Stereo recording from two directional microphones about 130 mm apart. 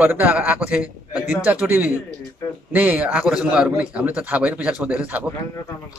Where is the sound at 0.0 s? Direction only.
10° right (ahead or behind).